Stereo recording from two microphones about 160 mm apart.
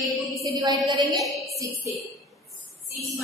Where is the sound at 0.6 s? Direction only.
25° right (ahead or behind).